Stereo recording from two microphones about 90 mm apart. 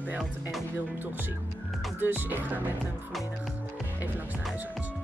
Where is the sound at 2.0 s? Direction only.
20° right (ahead or behind).